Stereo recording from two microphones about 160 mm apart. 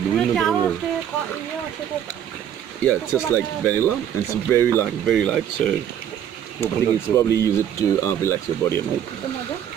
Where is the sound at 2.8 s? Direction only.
15° left (ahead or behind).